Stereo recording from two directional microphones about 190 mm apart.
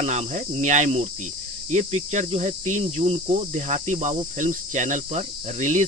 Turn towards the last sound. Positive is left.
turn(degrees=-40)  # may be behind; listen again after turning